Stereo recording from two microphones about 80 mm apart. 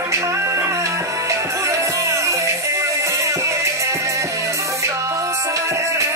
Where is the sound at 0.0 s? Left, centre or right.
Right.